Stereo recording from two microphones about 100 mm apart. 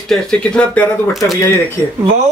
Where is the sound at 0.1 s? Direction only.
10° left (ahead or behind).